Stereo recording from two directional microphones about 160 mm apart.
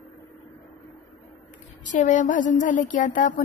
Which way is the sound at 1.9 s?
50° left (ahead or behind).